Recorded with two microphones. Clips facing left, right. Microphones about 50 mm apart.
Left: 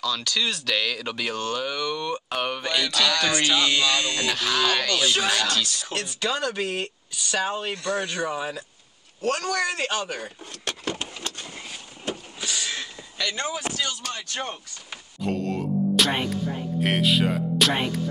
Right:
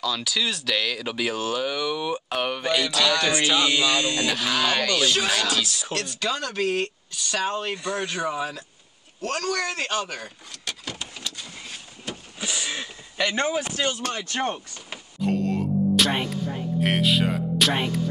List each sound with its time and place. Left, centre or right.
0.0 s speech: centre
7.7 s speech: centre
9.6 s speech: centre
10.6 s a sound: left
12.4 s a sound: centre
13.3 s speech: right
15.1 s music: centre
16.8 s speech: centre